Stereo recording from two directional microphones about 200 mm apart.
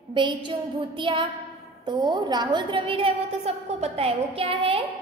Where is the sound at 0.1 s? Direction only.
25° right (ahead or behind).